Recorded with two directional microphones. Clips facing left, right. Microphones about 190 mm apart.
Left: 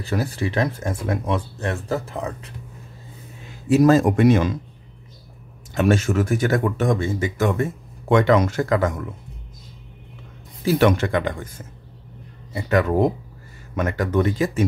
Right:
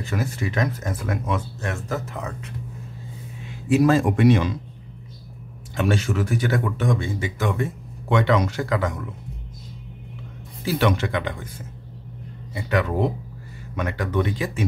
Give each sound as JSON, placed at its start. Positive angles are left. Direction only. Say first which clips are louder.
{"t": 0.0, "sound": "speech", "louder": "left 3 dB", "side_deg": 35}
{"t": 3.6, "sound": "speech", "louder": "left 3 dB", "side_deg": 40}
{"t": 5.8, "sound": "speech", "louder": "left 4 dB", "side_deg": 45}
{"t": 10.6, "sound": "speech", "louder": "left 4 dB", "side_deg": 45}
{"t": 12.5, "sound": "speech", "louder": "left 4 dB", "side_deg": 45}